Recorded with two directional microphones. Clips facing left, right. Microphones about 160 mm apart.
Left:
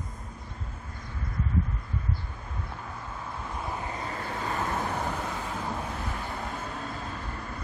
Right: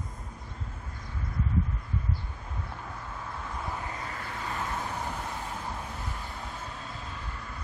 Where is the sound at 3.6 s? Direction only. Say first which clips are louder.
Left 4 dB; 25° left (ahead or behind).